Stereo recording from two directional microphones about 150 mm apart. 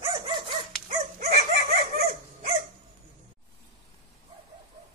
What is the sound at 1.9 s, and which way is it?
Dog, 75° right (ahead or behind).